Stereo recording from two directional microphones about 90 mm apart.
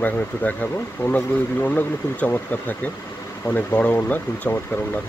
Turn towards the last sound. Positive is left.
turn(degrees=20)  # may be behind; listen again after turning